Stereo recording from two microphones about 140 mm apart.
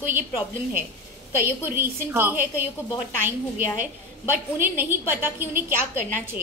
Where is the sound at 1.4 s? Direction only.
15° right (ahead or behind).